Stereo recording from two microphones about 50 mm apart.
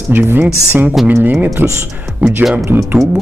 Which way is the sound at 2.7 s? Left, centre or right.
Right.